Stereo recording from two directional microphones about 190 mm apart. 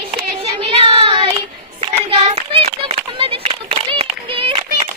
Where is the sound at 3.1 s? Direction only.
30° right (ahead or behind).